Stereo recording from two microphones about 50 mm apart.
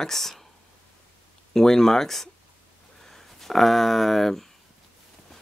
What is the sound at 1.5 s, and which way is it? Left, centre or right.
Speech, centre.